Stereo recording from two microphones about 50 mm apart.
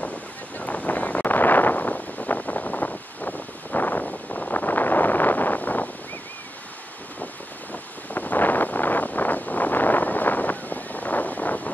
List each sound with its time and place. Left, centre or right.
0.6 s wind noise: left
7.7 s wind: left